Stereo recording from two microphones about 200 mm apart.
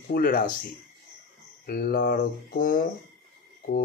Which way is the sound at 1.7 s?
50° left (ahead or behind).